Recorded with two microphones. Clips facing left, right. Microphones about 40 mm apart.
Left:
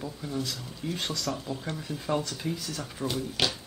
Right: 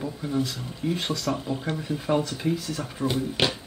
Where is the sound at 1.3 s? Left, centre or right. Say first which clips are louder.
Right 5 dB; right.